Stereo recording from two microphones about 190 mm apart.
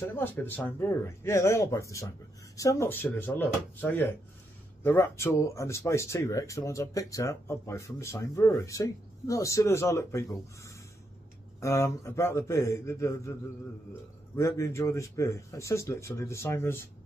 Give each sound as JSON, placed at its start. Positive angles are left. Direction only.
{"t": 0.1, "sound": "speech", "side_deg": 10}
{"t": 11.6, "sound": "speech", "side_deg": 15}
{"t": 14.3, "sound": "speech", "side_deg": 15}